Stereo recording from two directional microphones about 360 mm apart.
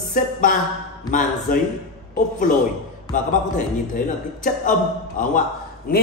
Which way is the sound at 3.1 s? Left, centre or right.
Left.